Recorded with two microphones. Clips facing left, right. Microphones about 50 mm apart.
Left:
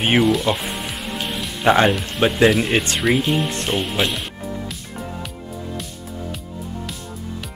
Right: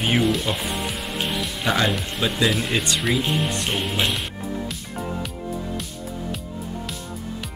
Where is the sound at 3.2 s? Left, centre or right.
Centre.